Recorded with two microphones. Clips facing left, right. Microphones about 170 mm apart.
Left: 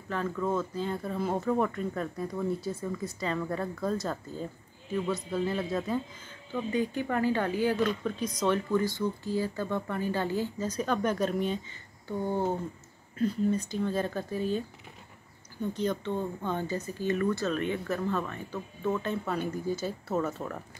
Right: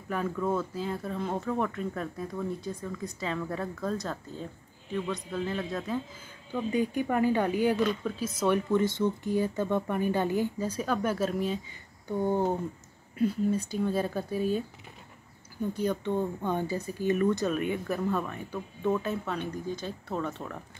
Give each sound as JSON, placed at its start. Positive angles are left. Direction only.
{"t": 0.1, "sound": "speech", "side_deg": -10}
{"t": 6.5, "sound": "speech", "side_deg": -10}
{"t": 12.1, "sound": "speech", "side_deg": -15}
{"t": 15.7, "sound": "speech", "side_deg": -10}
{"t": 18.9, "sound": "speech", "side_deg": 0}